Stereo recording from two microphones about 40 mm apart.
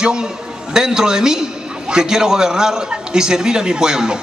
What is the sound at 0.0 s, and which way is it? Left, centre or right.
A man's voice, centre.